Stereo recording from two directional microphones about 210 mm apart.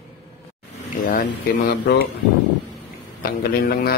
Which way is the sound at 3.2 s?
45° left (ahead or behind).